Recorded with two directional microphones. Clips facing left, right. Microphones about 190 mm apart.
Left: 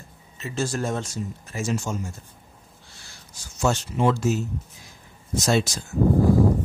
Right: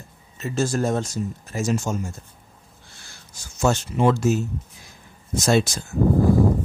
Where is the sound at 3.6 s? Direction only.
50° right (ahead or behind).